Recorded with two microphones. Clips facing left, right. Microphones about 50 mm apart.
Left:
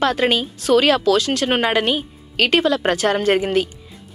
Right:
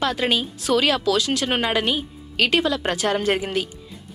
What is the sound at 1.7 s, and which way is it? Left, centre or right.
Speech, left.